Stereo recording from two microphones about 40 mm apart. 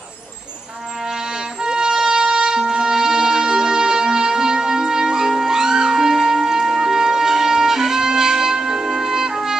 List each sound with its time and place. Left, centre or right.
1.6 s wind instrument: right
5.3 s music: centre